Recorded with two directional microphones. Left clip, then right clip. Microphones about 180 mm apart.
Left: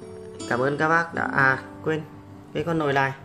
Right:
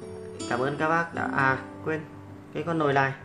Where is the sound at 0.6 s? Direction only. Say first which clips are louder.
Left 4 dB; 20° left (ahead or behind).